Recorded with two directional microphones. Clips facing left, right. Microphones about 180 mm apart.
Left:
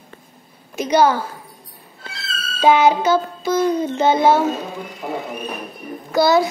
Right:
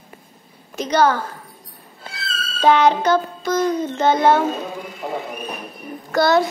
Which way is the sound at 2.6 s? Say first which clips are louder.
Left 1 dB; 10° left (ahead or behind).